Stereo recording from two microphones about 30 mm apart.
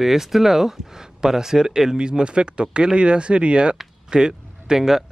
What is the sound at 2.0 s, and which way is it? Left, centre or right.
Speech, right.